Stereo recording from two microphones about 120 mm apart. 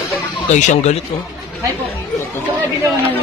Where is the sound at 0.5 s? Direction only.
80° left.